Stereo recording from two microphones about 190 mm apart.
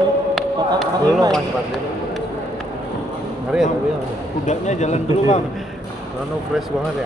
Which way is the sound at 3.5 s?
5° right (ahead or behind).